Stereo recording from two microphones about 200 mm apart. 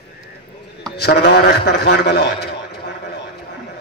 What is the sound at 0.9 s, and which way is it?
A man's voice, 55° left (ahead or behind).